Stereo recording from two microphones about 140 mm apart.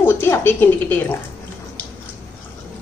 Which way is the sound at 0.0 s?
15° left (ahead or behind).